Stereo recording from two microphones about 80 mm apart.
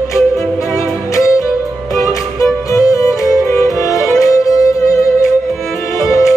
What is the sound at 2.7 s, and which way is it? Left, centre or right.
Music, left.